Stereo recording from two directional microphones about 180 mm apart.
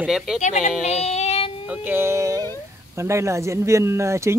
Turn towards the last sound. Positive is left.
turn(degrees=-15)  # may be behind; listen again after turning